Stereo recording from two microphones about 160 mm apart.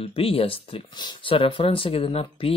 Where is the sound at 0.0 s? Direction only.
35° left (ahead or behind).